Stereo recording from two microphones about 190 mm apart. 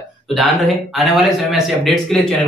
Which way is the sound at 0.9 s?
Centre (ahead or behind).